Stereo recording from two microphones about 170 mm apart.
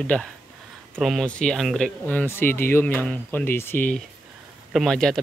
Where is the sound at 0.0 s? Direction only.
5° left (ahead or behind).